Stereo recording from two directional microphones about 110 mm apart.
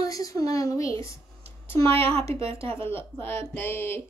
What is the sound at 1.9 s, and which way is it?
Speech, 60° right (ahead or behind).